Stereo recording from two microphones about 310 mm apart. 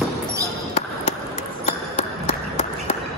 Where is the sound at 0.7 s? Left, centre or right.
Left.